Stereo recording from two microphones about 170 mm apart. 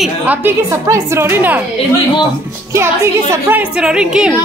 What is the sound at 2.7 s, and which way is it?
A woman's voice, 15° right (ahead or behind).